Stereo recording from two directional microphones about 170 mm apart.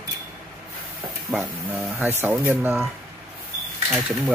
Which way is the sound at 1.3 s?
5° right (ahead or behind).